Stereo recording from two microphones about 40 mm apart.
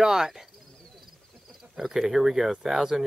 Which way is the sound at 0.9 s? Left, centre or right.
Centre.